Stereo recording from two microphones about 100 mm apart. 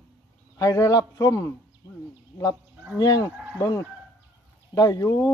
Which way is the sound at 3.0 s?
40° left (ahead or behind).